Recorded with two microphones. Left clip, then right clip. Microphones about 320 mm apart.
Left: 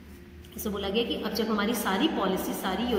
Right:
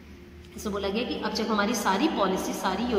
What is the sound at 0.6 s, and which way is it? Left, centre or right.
A woman's voice, right.